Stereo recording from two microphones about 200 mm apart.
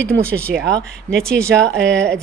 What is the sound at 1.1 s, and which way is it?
Speech, 35° right (ahead or behind).